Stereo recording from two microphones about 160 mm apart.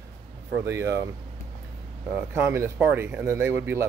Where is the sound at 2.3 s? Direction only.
15° right (ahead or behind).